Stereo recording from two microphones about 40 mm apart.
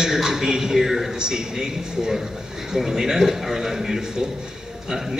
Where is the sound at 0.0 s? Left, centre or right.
Centre.